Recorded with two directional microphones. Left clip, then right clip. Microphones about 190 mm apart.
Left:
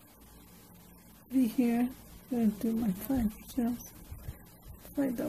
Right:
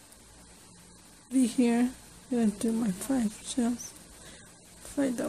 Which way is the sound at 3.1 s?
15° right (ahead or behind).